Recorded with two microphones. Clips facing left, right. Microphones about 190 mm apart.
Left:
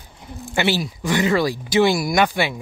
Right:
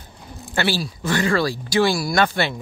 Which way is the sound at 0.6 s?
20° left (ahead or behind).